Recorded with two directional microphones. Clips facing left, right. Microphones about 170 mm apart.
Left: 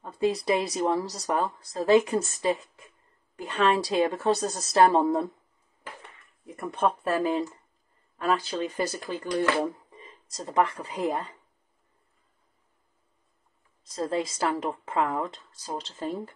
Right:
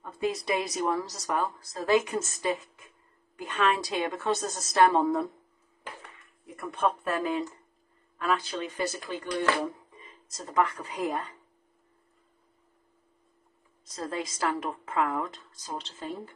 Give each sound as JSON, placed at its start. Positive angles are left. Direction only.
{"t": 0.0, "sound": "a sound", "side_deg": 35}
{"t": 0.5, "sound": "speech", "side_deg": 30}
{"t": 6.4, "sound": "speech", "side_deg": 30}
{"t": 13.8, "sound": "a woman's voice", "side_deg": 30}